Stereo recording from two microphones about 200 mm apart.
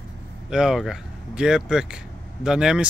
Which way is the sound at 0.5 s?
Centre (ahead or behind).